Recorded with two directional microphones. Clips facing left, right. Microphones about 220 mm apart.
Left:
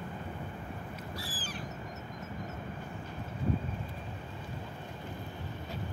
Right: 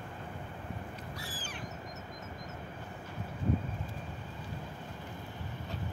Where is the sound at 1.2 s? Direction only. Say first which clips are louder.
Left 1 dB; 35° left (ahead or behind).